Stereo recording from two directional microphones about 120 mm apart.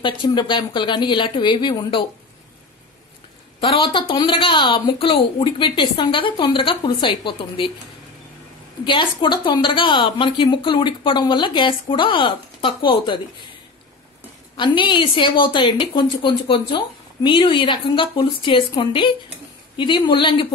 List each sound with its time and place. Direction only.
0.0 s a woman's voice: 40° left (ahead or behind)
3.6 s a woman's voice: 45° left (ahead or behind)
8.8 s a woman's voice: 45° left (ahead or behind)
14.6 s a woman's voice: 40° left (ahead or behind)